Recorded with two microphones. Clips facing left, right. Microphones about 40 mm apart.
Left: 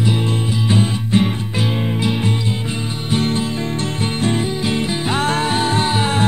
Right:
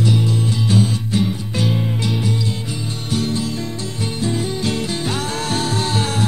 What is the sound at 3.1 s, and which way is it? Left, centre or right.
Music, left.